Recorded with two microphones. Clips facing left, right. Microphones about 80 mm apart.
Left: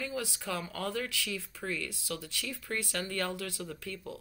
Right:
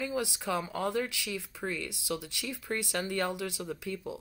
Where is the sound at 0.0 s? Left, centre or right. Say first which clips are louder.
Right 4 dB; centre.